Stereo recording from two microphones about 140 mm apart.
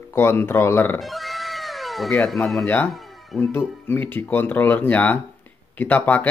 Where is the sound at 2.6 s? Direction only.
15° left (ahead or behind).